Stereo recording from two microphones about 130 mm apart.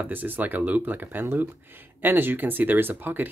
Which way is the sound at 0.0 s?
15° right (ahead or behind).